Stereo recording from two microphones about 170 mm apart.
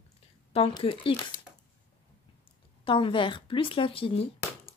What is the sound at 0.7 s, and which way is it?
Speech, 30° left (ahead or behind).